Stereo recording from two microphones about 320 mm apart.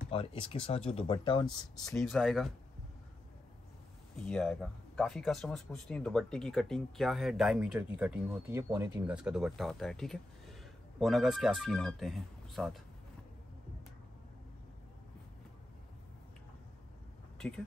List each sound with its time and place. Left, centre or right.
0.1 s speech: centre
1.9 s speech: centre
4.3 s speech: centre